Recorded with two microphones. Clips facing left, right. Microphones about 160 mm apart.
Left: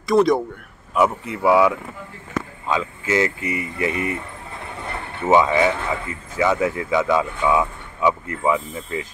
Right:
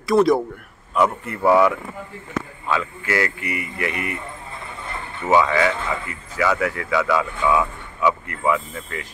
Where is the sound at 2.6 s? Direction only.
20° left (ahead or behind).